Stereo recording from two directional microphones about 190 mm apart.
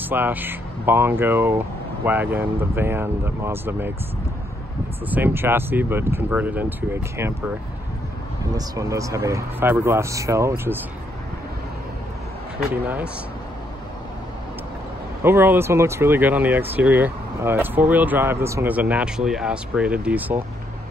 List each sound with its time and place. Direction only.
0.1 s speech: 10° right (ahead or behind)
5.1 s speech: 10° right (ahead or behind)
8.5 s speech: 15° right (ahead or behind)
12.8 s speech: 10° right (ahead or behind)
15.2 s speech: 10° right (ahead or behind)